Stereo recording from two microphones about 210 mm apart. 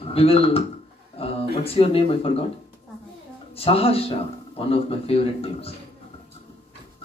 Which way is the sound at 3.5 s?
25° left (ahead or behind).